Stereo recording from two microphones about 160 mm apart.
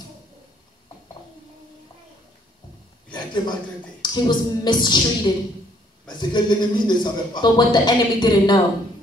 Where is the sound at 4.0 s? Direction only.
25° left (ahead or behind).